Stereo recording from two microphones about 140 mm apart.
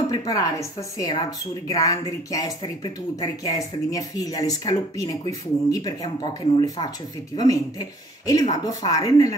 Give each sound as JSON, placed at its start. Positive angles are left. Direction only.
{"t": 0.1, "sound": "speech", "side_deg": 25}